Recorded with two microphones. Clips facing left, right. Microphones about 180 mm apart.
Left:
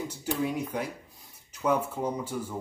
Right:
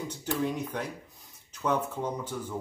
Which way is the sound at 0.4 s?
10° left (ahead or behind).